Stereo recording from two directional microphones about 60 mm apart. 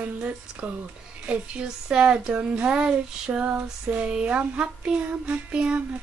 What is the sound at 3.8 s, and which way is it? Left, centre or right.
Speech, right.